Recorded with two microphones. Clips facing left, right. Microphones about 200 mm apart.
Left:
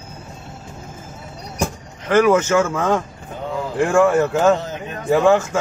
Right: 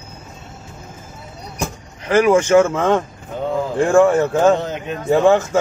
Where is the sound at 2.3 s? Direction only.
30° right (ahead or behind).